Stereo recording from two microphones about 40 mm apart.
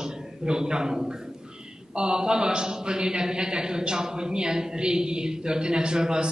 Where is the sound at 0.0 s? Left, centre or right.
Centre.